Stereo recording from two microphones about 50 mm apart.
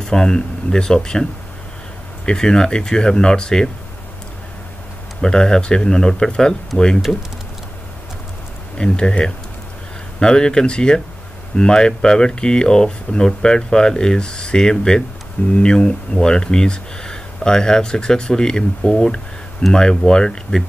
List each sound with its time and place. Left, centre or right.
0.0 s speech: centre
2.2 s speech: centre
5.2 s speech: centre
6.7 s speech: left
8.7 s speech: centre